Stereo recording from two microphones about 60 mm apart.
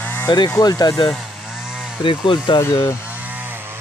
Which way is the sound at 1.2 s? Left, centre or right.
Centre.